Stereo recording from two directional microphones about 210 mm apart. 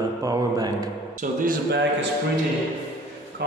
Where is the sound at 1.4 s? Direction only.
55° right (ahead or behind).